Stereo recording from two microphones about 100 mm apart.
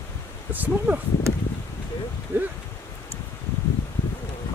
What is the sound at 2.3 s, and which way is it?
Speech, 25° right (ahead or behind).